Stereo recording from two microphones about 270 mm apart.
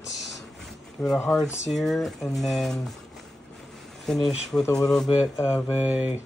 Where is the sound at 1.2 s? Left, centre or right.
Centre.